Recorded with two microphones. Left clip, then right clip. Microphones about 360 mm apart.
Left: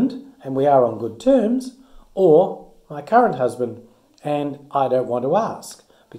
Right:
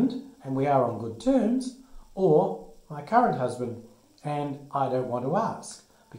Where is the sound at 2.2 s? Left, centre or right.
Centre.